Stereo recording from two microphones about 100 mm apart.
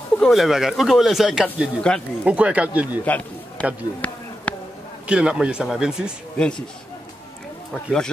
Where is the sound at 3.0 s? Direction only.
15° left (ahead or behind).